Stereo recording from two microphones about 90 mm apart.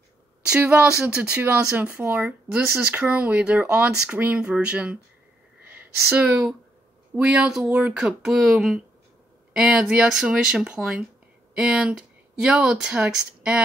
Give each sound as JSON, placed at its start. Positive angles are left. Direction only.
{"t": 0.5, "sound": "speech", "side_deg": -15}
{"t": 6.0, "sound": "speech", "side_deg": -15}